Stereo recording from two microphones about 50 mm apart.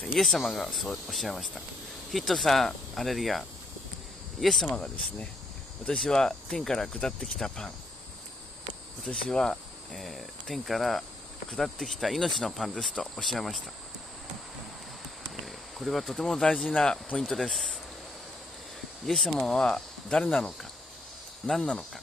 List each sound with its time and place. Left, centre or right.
0.2 s speech: centre
4.6 s speech: left
5.9 s speech: centre
9.0 s speech: centre
9.9 s speech: centre
15.4 s speech: centre
17.2 s speech: centre
19.0 s speech: centre
21.5 s speech: centre